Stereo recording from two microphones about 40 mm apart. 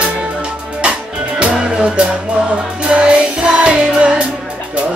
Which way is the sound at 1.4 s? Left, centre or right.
Right.